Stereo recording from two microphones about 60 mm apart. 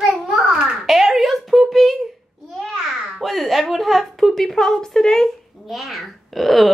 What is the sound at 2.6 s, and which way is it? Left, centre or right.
A child's voice, centre.